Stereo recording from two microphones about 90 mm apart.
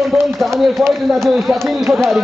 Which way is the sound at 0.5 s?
5° left (ahead or behind).